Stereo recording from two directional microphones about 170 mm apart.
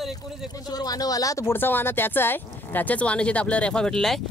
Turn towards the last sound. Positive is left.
turn(degrees=0)  # may be behind; listen again after turning